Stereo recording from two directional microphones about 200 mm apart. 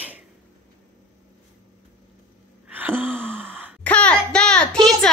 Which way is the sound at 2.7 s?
10° right (ahead or behind).